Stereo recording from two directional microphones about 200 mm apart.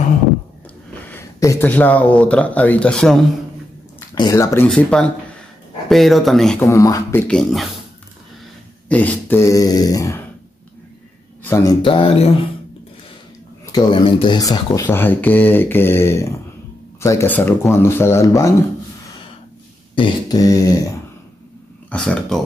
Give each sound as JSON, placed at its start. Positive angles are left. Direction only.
{"t": 1.0, "sound": "speech", "side_deg": 10}
{"t": 4.1, "sound": "speech", "side_deg": 15}
{"t": 6.6, "sound": "speech", "side_deg": 15}
{"t": 8.8, "sound": "speech", "side_deg": 10}
{"t": 11.4, "sound": "speech", "side_deg": 10}
{"t": 11.8, "sound": "speech", "side_deg": 25}
{"t": 13.7, "sound": "speech", "side_deg": 20}
{"t": 20.0, "sound": "speech", "side_deg": 20}
{"t": 21.8, "sound": "speech", "side_deg": 5}